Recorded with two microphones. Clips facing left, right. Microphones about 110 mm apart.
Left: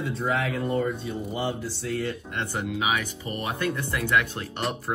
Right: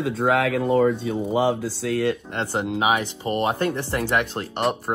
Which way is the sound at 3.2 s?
30° right (ahead or behind).